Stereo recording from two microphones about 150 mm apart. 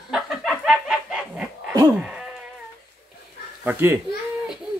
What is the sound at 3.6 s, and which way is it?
Speech, 15° right (ahead or behind).